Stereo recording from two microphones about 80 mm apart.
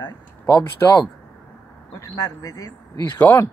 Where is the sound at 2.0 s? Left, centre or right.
Left.